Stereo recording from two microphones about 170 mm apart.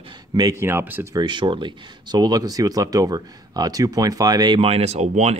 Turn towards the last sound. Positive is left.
turn(degrees=-40)  # may be behind; listen again after turning